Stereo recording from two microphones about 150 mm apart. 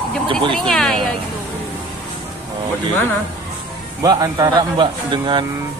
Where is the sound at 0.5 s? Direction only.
Centre (ahead or behind).